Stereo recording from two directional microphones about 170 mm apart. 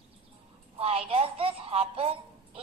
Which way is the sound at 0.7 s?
35° right (ahead or behind).